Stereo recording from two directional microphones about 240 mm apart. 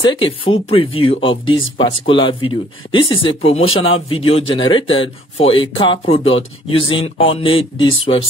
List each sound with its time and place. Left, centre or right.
0.0 s speech: centre